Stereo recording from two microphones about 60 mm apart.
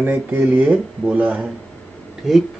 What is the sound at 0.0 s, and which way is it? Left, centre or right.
A man's voice, right.